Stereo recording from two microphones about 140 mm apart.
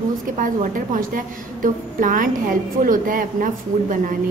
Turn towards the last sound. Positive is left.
turn(degrees=-80)